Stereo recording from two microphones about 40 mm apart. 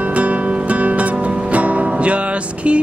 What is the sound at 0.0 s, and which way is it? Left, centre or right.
Music, right.